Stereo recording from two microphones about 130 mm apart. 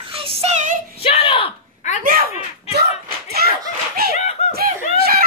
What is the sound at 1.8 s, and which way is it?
Speech, 65° left (ahead or behind).